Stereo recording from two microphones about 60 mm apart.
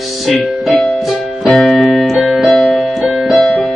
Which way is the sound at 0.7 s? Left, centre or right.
Centre.